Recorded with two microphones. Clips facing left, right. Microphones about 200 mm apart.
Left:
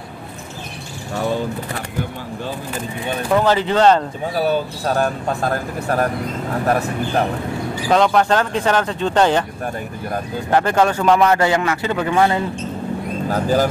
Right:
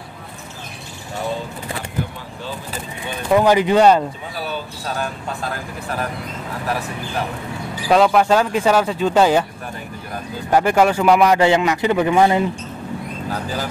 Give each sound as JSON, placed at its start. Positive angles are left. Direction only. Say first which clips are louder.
{"t": 3.3, "sound": "a man's voice", "louder": "right 3 dB", "side_deg": -15}
{"t": 4.5, "sound": "speech", "louder": "left 7 dB", "side_deg": 45}
{"t": 7.9, "sound": "a man's voice", "louder": "right 1 dB", "side_deg": -5}
{"t": 10.5, "sound": "a man's voice", "louder": "right 1 dB", "side_deg": -10}
{"t": 13.3, "sound": "speech", "louder": "left 9 dB", "side_deg": 45}